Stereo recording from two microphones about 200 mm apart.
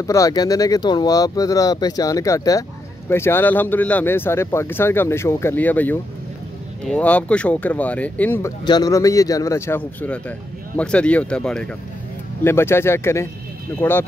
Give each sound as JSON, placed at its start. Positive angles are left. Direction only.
{"t": 0.0, "sound": "speech", "side_deg": 15}